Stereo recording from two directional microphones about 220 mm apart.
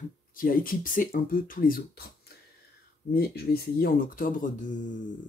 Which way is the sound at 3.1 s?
45° left (ahead or behind).